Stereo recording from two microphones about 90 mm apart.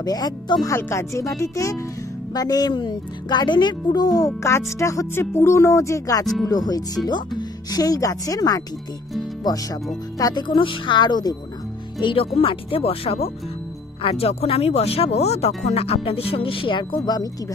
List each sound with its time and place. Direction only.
0.0 s speech: 45° left (ahead or behind)
0.7 s speech: 30° left (ahead or behind)
2.3 s speech: 45° left (ahead or behind)
4.4 s speech: 30° left (ahead or behind)
10.1 s speech: 40° left (ahead or behind)
10.4 s speech: 65° left (ahead or behind)
12.0 s speech: 65° left (ahead or behind)
12.4 s speech: 90° left; by 17.3 s 50° left (ahead or behind)